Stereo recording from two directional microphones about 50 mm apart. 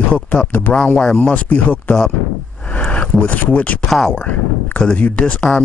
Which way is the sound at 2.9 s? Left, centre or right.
Left.